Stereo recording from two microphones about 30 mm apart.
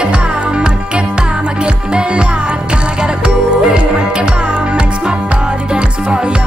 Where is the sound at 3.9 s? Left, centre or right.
Right.